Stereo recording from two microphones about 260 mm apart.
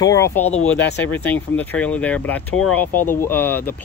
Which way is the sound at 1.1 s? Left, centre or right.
Centre.